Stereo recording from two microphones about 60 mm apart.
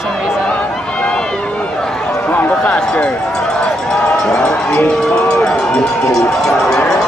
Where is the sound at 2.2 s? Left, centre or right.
Left.